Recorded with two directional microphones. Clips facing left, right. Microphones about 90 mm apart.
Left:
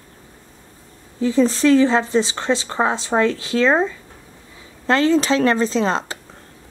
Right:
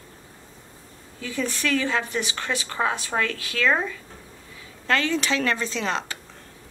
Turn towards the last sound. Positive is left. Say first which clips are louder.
# left 7 dB
turn(degrees=30)  # may be behind; listen again after turning